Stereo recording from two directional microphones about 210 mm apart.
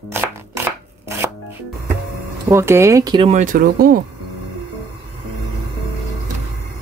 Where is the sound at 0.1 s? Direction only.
10° right (ahead or behind).